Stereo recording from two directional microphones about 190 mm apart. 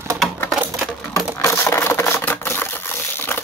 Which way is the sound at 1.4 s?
15° left (ahead or behind).